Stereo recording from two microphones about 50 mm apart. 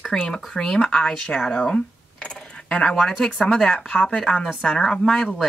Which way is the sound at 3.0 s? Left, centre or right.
Centre.